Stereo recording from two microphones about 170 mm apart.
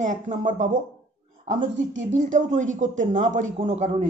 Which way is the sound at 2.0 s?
45° right (ahead or behind).